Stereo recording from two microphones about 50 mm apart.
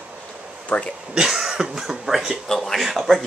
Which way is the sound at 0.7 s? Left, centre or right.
Left.